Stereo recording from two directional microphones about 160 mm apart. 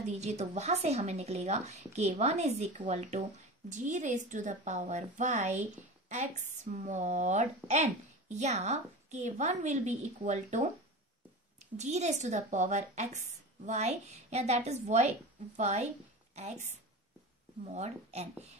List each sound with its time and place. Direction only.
0.2 s a woman's voice: 45° right (ahead or behind)
11.7 s a woman's voice: 45° right (ahead or behind)